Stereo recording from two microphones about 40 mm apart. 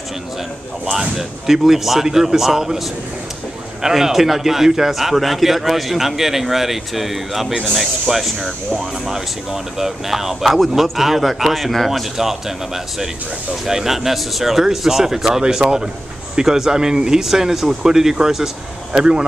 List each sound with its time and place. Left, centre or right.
0.9 s speech: centre